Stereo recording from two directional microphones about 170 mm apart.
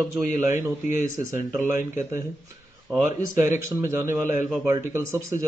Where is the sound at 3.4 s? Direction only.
15° right (ahead or behind).